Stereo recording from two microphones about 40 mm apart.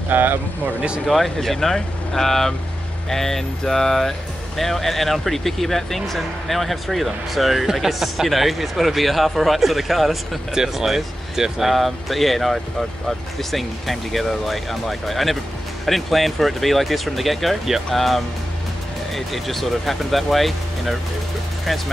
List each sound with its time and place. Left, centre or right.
0.1 s speech: right
1.0 s speech: centre
11.7 s speech: centre